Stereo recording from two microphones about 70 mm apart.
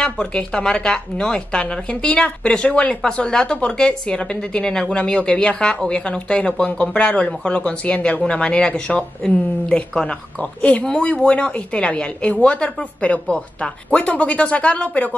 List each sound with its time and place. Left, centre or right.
0.0 s a woman's voice: centre